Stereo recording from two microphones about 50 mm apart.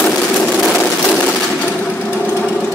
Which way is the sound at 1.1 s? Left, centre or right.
Left.